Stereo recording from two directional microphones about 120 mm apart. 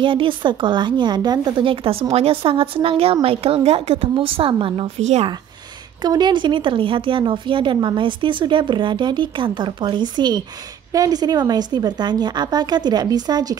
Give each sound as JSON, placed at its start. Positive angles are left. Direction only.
{"t": 0.0, "sound": "speech", "side_deg": -45}
{"t": 6.0, "sound": "speech", "side_deg": -35}